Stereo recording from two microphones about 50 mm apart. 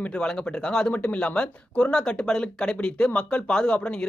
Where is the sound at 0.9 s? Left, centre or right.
Left.